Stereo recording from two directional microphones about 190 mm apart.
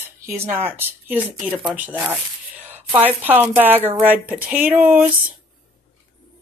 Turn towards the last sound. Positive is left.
turn(degrees=-5)  # may be behind; listen again after turning